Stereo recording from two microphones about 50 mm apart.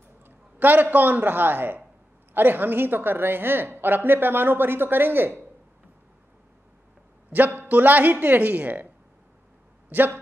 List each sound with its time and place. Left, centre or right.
0.2 s a man's voice: right
7.3 s speech: right
9.8 s speech: right